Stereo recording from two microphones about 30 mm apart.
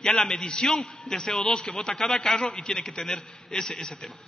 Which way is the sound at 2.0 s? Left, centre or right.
Centre.